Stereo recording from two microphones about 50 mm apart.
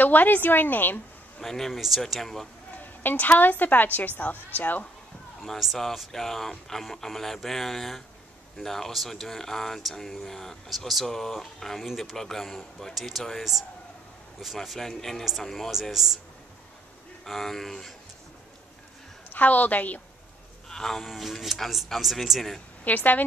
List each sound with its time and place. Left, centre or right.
0.0 s a woman's voice: left
1.4 s speech: centre
2.8 s a woman's voice: left
5.4 s speech: centre
17.2 s speech: centre
19.3 s a woman's voice: left
20.7 s speech: centre
22.8 s a woman's voice: left